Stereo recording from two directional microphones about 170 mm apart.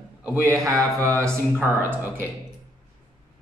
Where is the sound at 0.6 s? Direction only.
20° right (ahead or behind).